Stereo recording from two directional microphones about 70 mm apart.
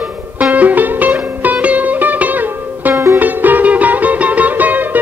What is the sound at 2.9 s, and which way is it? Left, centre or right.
Music, right.